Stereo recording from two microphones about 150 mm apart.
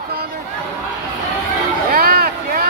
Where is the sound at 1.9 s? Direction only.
90° right.